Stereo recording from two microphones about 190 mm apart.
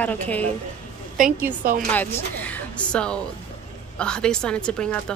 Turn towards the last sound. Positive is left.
turn(degrees=5)  # may be behind; listen again after turning